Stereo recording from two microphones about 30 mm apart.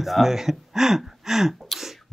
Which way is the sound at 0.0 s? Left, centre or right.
Centre.